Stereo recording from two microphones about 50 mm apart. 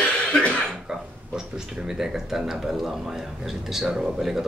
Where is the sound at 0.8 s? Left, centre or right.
Centre.